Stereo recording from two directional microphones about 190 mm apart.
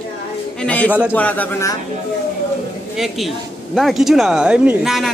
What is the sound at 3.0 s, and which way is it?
A woman's voice, centre (ahead or behind).